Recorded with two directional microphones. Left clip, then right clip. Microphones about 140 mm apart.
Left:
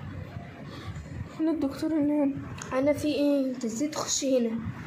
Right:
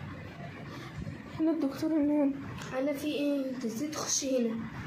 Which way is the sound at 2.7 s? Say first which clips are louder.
Left 7 dB; 30° left (ahead or behind).